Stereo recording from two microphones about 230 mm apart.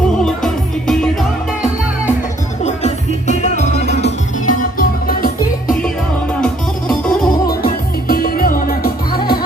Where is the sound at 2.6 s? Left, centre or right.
Left.